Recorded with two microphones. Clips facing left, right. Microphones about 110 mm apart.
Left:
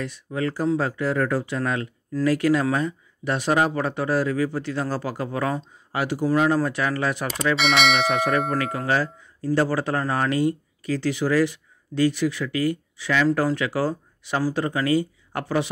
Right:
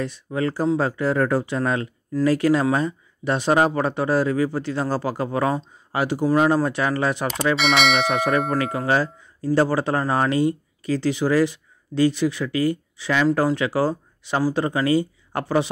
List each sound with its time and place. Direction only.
0.0 s speech: 30° right (ahead or behind)
7.5 s speech: centre (ahead or behind)
8.5 s speech: 30° right (ahead or behind)